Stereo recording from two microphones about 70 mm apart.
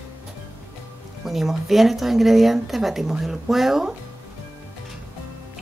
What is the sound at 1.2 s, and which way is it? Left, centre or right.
A woman's voice, centre.